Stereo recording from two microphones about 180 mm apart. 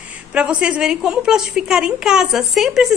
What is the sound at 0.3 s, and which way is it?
A woman's voice, 5° right (ahead or behind).